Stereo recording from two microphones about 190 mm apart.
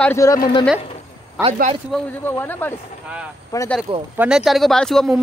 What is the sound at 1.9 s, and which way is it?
Speech, 10° left (ahead or behind).